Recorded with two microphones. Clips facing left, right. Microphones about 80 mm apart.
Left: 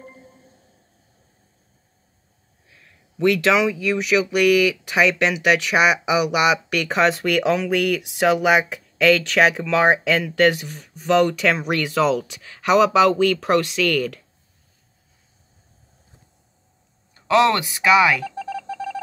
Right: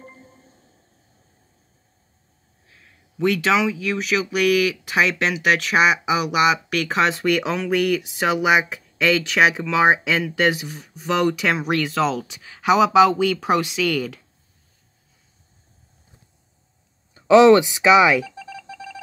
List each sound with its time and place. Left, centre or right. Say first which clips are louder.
0.0 s music: left 1 dB; centre
2.7 s a sound: even; centre
3.8 s speech: left 3 dB; centre
17.1 s speech: right 6 dB; centre
18.2 s telephone dialing: left 8 dB; left